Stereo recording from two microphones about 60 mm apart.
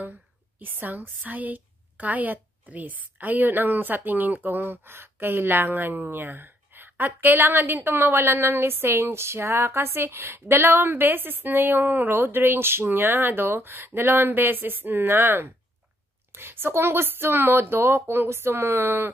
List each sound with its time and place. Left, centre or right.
0.6 s a woman's voice: right